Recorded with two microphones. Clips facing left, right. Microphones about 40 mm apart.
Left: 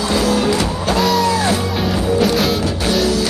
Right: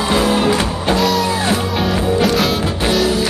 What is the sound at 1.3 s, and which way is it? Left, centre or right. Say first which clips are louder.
Music: left 1 dB; right.